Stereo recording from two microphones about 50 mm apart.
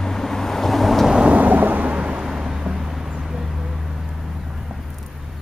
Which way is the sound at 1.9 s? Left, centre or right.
Right.